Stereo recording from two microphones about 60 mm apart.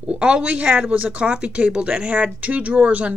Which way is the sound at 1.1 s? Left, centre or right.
Centre.